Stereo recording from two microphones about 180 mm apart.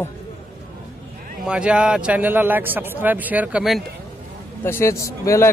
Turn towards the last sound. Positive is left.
turn(degrees=15)  # may be behind; listen again after turning